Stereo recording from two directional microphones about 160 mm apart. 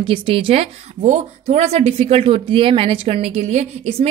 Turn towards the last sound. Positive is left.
turn(degrees=-40)  # may be behind; listen again after turning